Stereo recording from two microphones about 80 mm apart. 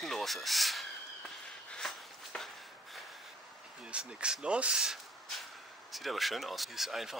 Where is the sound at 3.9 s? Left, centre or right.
Centre.